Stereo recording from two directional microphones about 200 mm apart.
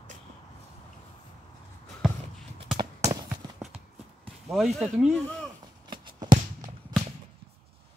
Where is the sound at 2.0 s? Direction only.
Centre (ahead or behind).